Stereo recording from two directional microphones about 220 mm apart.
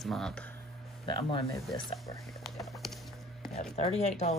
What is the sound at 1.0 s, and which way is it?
Speech, 25° left (ahead or behind).